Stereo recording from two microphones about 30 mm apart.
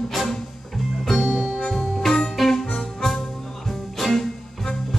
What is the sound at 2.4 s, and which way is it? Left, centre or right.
Music, centre.